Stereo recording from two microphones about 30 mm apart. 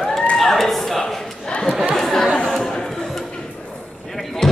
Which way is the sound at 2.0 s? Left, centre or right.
Centre.